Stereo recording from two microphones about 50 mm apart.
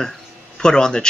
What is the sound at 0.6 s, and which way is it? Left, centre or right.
Speech, centre.